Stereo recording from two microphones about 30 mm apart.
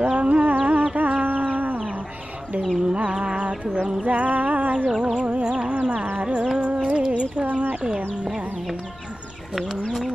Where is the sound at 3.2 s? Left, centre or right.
Right.